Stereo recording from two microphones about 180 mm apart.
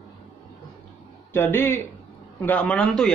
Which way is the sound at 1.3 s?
10° left (ahead or behind).